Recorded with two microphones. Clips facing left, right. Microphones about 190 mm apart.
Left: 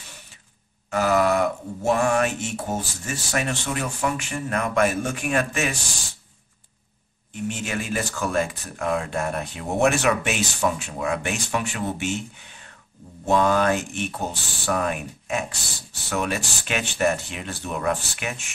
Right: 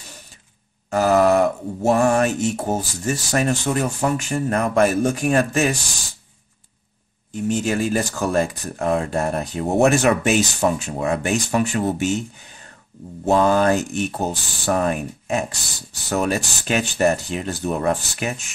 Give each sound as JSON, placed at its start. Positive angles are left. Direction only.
{"t": 0.8, "sound": "groan", "side_deg": -40}
{"t": 1.9, "sound": "speech", "side_deg": -40}
{"t": 7.3, "sound": "speech", "side_deg": -40}